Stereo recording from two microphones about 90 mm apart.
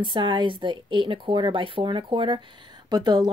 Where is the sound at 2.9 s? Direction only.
50° right (ahead or behind).